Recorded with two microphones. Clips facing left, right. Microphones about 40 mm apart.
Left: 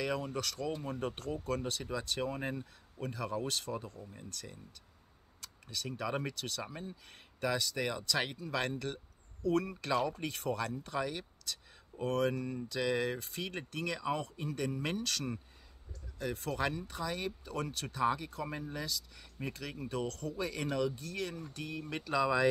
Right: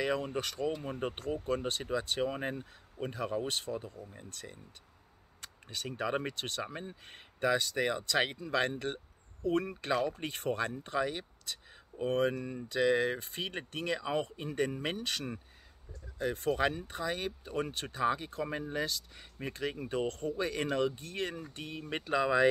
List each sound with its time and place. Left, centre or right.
0.0 s speech: right
1.9 s speech: right
7.1 s speech: right
15.0 s speech: centre
16.2 s speech: right